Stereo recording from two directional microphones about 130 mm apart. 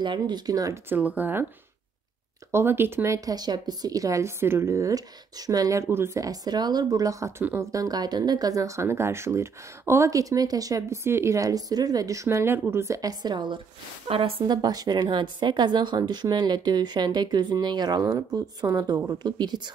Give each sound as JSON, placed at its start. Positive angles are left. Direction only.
{"t": 0.0, "sound": "speech", "side_deg": -35}
{"t": 0.8, "sound": "speech", "side_deg": -15}
{"t": 2.5, "sound": "a woman's voice", "side_deg": -15}
{"t": 14.5, "sound": "speech", "side_deg": -30}